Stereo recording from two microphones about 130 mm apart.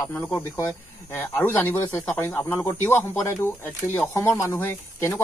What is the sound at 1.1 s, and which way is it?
Speech, 15° left (ahead or behind).